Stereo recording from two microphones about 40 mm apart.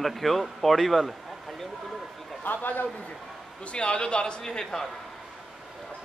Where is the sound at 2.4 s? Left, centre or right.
Left.